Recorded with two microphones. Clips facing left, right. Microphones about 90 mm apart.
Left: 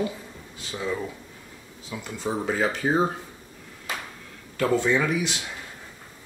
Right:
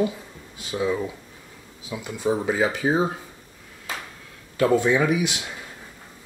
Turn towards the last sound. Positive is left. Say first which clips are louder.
# right 3 dB
turn(degrees=-15)  # may be behind; listen again after turning